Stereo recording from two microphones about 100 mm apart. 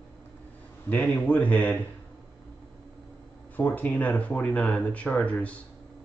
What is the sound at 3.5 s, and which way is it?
Speech, 15° left (ahead or behind).